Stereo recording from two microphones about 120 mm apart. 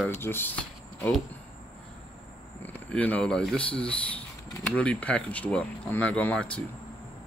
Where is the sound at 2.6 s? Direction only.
10° left (ahead or behind).